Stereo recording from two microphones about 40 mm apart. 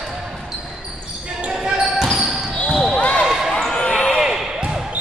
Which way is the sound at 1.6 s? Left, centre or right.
Centre.